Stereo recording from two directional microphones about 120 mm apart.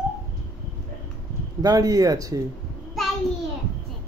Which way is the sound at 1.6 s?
30° right (ahead or behind).